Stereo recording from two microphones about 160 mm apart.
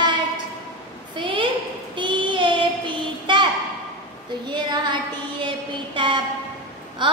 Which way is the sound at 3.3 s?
30° right (ahead or behind).